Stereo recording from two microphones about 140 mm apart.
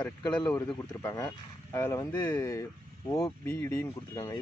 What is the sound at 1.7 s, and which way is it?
Speech, 20° left (ahead or behind).